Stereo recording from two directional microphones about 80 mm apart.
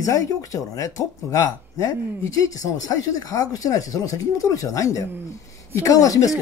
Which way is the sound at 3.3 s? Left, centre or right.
Left.